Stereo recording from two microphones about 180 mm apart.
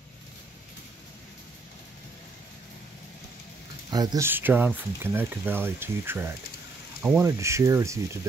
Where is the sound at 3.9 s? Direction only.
20° right (ahead or behind).